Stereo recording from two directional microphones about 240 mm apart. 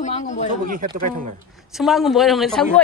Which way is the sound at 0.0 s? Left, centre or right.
Left.